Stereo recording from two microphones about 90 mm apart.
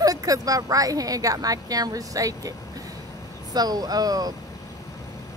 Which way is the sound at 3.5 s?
45° right (ahead or behind).